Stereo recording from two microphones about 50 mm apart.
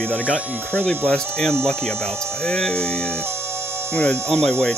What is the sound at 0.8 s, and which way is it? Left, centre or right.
Speech, centre.